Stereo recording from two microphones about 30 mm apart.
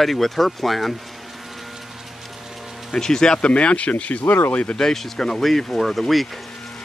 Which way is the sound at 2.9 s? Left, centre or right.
Centre.